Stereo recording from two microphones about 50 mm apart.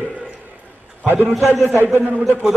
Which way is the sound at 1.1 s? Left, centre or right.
Right.